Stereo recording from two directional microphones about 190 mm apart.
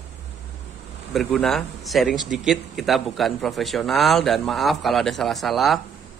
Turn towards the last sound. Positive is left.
turn(degrees=0)  # may be behind; listen again after turning